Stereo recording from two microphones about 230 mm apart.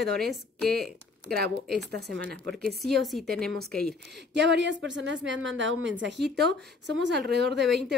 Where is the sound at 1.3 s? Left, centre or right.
Right.